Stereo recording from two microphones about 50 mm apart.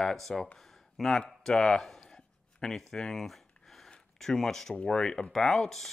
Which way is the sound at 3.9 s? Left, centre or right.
Centre.